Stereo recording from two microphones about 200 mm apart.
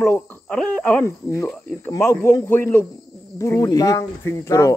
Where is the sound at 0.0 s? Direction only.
10° left (ahead or behind).